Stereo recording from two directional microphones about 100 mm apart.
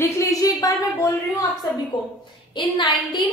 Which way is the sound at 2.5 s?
50° left (ahead or behind).